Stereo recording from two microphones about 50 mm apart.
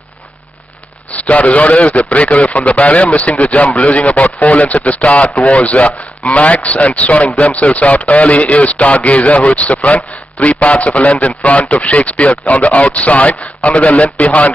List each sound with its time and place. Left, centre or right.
1.1 s speech: left